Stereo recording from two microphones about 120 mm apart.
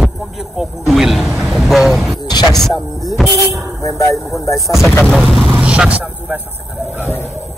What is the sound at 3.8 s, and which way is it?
Speech, 25° left (ahead or behind).